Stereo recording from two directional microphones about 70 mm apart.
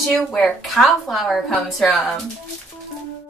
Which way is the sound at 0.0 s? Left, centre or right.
Centre.